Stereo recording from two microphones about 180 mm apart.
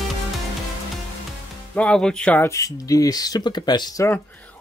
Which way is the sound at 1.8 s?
5° left (ahead or behind).